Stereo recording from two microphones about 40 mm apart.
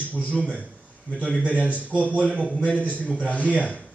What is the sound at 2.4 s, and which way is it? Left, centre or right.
Speech, left.